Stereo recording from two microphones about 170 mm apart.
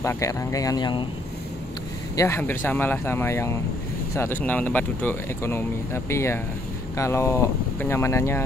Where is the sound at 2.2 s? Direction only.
15° left (ahead or behind).